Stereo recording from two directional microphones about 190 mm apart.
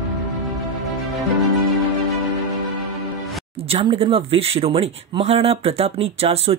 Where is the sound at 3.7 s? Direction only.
30° right (ahead or behind).